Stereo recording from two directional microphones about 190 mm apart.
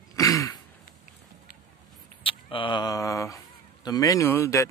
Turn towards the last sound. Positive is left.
turn(degrees=15)  # may be behind; listen again after turning